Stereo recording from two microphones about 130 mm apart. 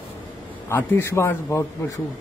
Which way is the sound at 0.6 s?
20° left (ahead or behind).